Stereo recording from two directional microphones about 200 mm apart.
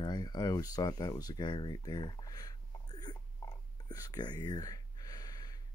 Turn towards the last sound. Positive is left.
turn(degrees=20)  # may be behind; listen again after turning